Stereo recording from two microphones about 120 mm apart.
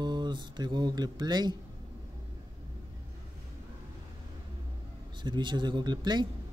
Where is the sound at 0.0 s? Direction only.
40° right (ahead or behind).